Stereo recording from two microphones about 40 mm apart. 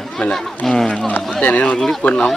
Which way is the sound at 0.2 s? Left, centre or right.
Left.